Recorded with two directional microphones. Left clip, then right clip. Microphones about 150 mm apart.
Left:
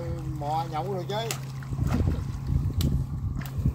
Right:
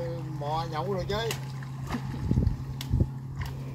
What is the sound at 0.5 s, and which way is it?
Speech, 20° left (ahead or behind).